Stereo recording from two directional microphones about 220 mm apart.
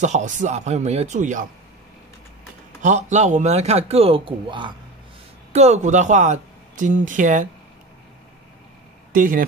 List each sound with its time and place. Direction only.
0.0 s speech: 35° right (ahead or behind)
2.8 s a man's voice: 35° right (ahead or behind)
9.1 s speech: 40° right (ahead or behind)